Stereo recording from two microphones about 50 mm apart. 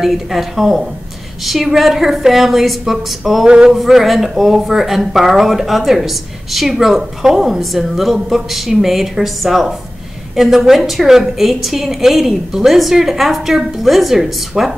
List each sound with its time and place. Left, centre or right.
0.0 s speech: centre
3.4 s male singing: centre
3.7 s speech: centre